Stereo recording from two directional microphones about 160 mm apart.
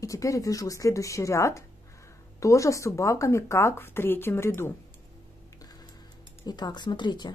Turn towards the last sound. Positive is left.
turn(degrees=25)  # may be behind; listen again after turning